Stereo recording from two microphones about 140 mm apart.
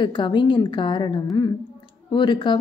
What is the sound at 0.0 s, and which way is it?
A woman's voice, 35° left (ahead or behind).